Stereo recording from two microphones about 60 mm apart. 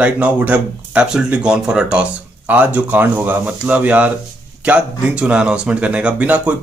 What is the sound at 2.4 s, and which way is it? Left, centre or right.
Speech, right.